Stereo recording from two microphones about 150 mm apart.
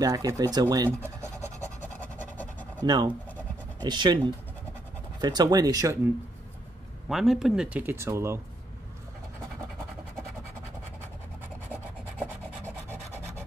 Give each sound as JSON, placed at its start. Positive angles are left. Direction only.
{"t": 0.0, "sound": "speech", "side_deg": -25}
{"t": 1.6, "sound": "a sound", "side_deg": 10}
{"t": 2.8, "sound": "speech", "side_deg": -30}
{"t": 5.2, "sound": "speech", "side_deg": -25}
{"t": 7.1, "sound": "speech", "side_deg": 0}